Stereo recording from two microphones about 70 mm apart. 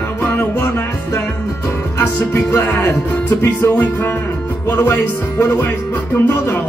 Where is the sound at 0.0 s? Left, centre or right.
Left.